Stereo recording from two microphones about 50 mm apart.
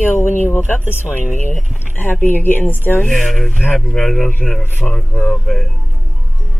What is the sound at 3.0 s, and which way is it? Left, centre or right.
Speech, centre.